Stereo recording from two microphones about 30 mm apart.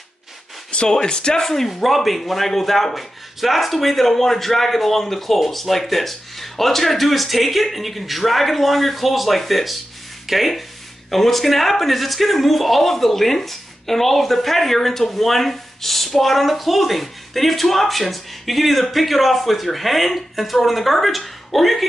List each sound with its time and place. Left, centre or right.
0.7 s speech: left
1.5 s a man's voice: centre